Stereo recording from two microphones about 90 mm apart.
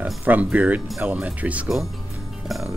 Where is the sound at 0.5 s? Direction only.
15° right (ahead or behind).